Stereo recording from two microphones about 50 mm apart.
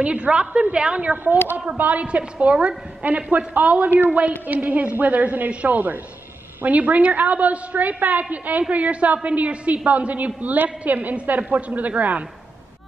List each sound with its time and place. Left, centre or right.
0.0 s a woman's voice: right
1.1 s a woman's voice: right